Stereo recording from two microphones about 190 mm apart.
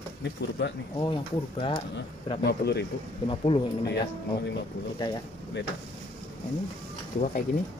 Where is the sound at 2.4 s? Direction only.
60° left (ahead or behind).